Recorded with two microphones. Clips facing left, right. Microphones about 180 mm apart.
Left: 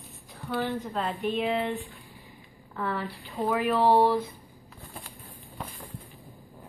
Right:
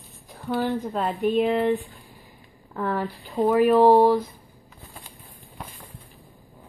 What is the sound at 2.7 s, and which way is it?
A woman's voice, 45° right (ahead or behind).